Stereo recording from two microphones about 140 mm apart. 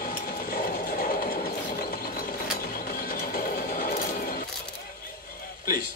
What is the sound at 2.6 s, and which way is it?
Mechanisms, 90° left.